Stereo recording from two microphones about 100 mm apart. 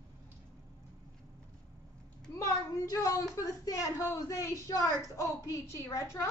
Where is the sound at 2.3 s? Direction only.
35° left (ahead or behind).